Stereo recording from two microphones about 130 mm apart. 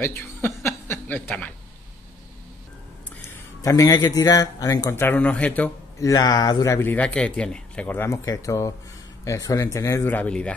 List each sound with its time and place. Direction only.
0.0 s speech: 15° left (ahead or behind)
3.6 s a man's voice: 25° left (ahead or behind)
5.0 s speech: 10° left (ahead or behind)
5.9 s a man's voice: 25° left (ahead or behind); by 10.5 s 10° left (ahead or behind)